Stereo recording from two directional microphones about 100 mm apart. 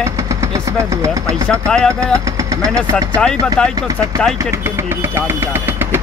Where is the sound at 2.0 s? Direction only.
35° right (ahead or behind).